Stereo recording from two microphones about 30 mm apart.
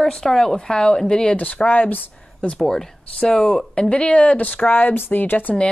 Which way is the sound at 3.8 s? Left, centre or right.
Left.